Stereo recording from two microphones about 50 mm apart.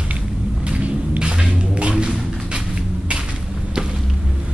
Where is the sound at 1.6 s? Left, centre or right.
Right.